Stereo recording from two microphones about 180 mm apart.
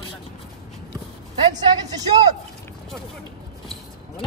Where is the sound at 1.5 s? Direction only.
20° right (ahead or behind).